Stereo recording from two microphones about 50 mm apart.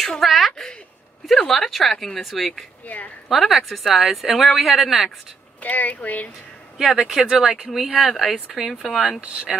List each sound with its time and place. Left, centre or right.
0.2 s speech: centre
0.5 s a sound: centre
1.5 s speech: centre
5.6 s speech: left
6.8 s speech: centre
9.2 s speech: right